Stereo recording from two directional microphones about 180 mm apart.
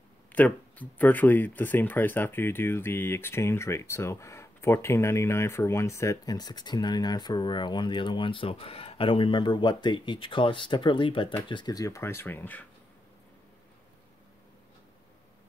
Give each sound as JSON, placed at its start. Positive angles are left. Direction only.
{"t": 0.3, "sound": "speech", "side_deg": 10}